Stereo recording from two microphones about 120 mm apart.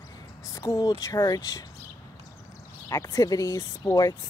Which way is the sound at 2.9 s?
25° left (ahead or behind).